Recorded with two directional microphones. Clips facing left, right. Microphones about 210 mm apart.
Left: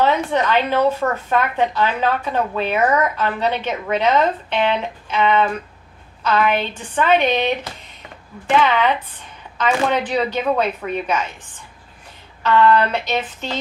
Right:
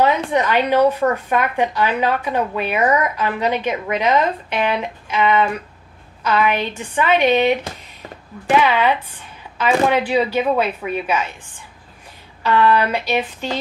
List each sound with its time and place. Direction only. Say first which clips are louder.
0.0 s a woman's voice: right 1 dB; 10° right (ahead or behind)
8.5 s a woman's voice: even; 10° right (ahead or behind)
12.4 s a woman's voice: left 1 dB; 10° right (ahead or behind)